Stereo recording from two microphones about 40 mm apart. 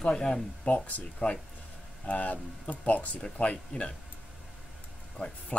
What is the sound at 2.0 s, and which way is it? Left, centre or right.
Speech, left.